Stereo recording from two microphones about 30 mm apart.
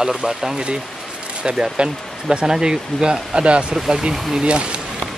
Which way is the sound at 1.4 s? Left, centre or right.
Right.